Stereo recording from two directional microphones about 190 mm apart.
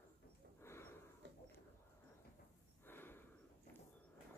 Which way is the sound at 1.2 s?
65° right (ahead or behind).